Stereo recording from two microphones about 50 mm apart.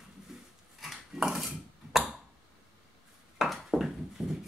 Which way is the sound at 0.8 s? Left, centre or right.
Centre.